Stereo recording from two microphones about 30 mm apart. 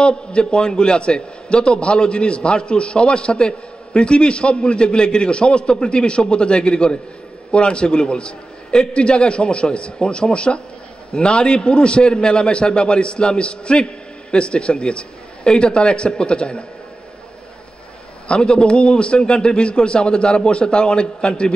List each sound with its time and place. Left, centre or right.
0.0 s a man's voice: left
18.3 s a man's voice: left